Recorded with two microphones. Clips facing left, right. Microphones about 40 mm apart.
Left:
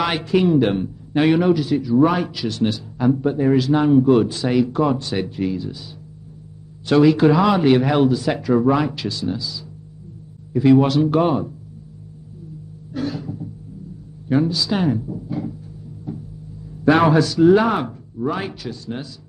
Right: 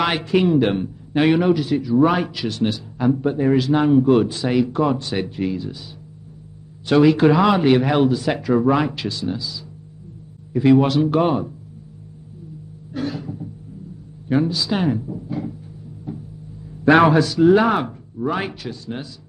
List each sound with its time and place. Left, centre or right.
0.2 s speech: right
1.1 s speech: centre; by 2.0 s right
2.0 s speech: right
4.2 s speech: right
6.9 s speech: right
7.3 s speech: centre; by 11.5 s right
12.9 s cough: right
14.3 s speech: right
15.0 s a sound: right
16.1 s cupboard open or close: right
17.0 s speech: right